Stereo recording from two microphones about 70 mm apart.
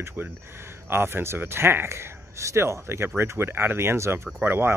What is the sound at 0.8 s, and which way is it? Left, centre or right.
Speech, right.